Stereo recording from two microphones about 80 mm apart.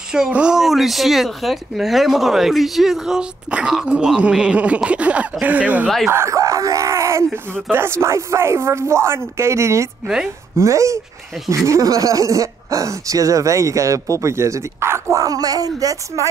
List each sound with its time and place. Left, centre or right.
0.1 s speech: centre
6.0 s groan: right
7.7 s speech: right